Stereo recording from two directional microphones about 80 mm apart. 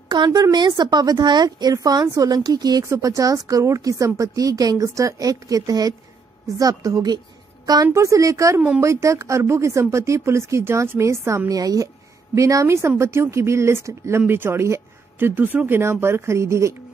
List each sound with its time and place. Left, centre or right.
0.1 s a woman's voice: right
2.9 s a woman's voice: right